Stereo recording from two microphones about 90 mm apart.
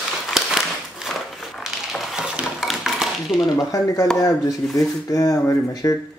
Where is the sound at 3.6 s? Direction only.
45° left (ahead or behind).